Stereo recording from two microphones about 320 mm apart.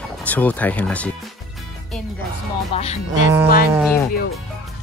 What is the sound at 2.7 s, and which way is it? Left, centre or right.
Speech, centre.